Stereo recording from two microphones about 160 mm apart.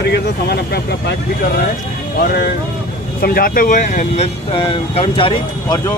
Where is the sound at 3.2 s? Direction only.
65° left (ahead or behind).